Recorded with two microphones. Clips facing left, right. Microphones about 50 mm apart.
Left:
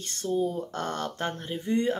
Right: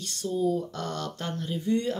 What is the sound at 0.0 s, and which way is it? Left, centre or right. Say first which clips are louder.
Speech: even; left.